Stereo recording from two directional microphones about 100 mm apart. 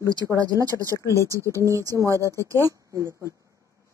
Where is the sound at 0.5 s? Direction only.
35° right (ahead or behind).